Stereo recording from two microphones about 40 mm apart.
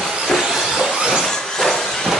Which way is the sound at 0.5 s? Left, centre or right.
Centre.